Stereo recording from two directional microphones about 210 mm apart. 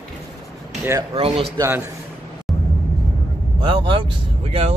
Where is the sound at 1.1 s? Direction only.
25° right (ahead or behind).